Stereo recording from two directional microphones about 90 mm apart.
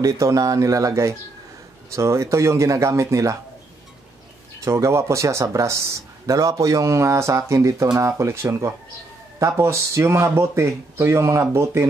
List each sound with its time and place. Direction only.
0.0 s speech: 35° right (ahead or behind)
4.6 s speech: 35° right (ahead or behind)